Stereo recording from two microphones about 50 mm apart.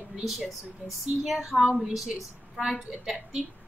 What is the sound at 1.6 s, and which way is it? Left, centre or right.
A woman's voice, centre.